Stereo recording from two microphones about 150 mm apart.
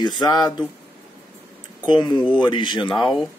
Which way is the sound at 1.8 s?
30° left (ahead or behind).